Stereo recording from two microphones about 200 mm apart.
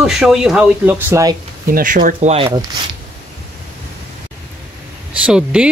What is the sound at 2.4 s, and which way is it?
Speech, 20° right (ahead or behind).